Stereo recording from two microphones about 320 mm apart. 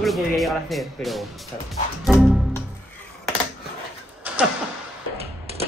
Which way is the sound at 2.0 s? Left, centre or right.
Centre.